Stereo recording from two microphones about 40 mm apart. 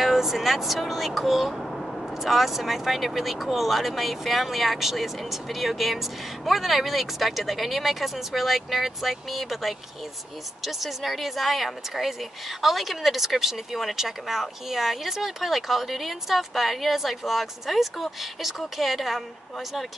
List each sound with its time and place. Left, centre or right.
0.0 s speech: centre